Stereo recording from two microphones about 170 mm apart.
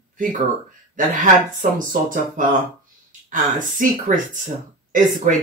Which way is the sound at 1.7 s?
50° right (ahead or behind).